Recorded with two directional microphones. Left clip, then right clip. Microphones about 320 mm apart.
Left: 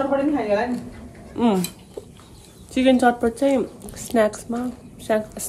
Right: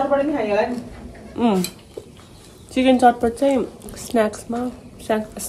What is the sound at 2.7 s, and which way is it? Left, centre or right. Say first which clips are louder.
A woman's voice: right 3 dB; centre.